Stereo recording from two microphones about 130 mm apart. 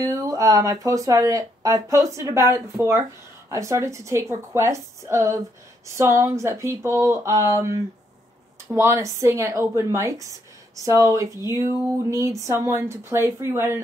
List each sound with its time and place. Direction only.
0.0 s speech: 25° right (ahead or behind)